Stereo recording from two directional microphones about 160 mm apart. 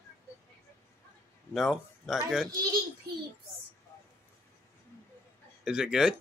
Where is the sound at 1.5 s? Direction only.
Centre (ahead or behind).